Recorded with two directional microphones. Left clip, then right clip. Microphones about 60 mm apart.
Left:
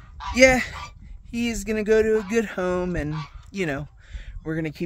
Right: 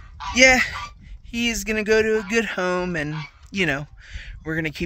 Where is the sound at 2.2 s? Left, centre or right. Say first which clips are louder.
Right 2 dB; left.